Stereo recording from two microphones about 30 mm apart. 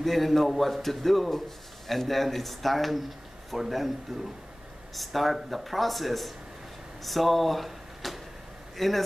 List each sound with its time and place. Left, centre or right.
0.0 s speech: centre